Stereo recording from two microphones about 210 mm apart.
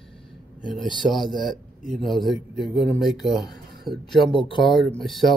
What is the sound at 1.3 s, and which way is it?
Speech, centre (ahead or behind).